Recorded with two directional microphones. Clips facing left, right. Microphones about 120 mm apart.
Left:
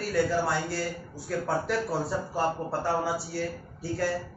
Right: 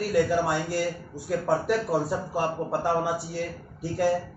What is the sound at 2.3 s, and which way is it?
Speech, 15° right (ahead or behind).